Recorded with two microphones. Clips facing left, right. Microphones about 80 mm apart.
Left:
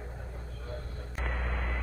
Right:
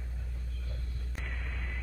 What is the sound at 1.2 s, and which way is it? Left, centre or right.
Vehicle, left.